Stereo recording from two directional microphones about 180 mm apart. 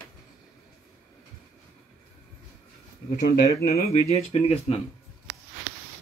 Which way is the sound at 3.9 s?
35° left (ahead or behind).